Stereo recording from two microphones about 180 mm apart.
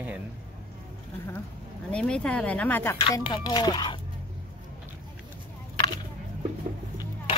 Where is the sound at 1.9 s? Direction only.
5° left (ahead or behind).